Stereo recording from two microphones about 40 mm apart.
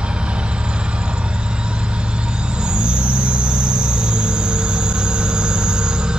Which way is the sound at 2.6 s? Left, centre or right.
Right.